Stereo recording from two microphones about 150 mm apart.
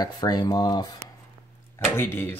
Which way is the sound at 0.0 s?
25° left (ahead or behind).